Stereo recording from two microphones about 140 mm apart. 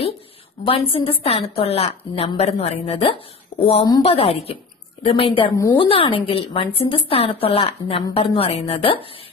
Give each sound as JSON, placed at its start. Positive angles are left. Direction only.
{"t": 0.7, "sound": "a woman's voice", "side_deg": 40}
{"t": 3.5, "sound": "a sound", "side_deg": 45}
{"t": 4.0, "sound": "a woman's voice", "side_deg": 45}